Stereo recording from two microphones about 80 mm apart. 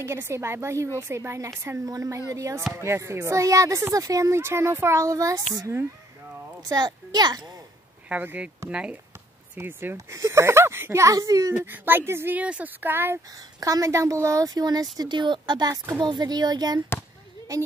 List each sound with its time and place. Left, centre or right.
0.0 s speech: right
6.7 s a child's voice: right
8.1 s speech: centre
9.6 s speech: right
9.9 s speech: right
11.6 s speech: right
12.4 s speech: centre
13.6 s speech: right